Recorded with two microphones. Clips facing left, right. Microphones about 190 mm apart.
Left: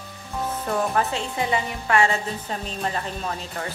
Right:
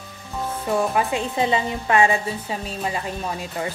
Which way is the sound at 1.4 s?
20° right (ahead or behind).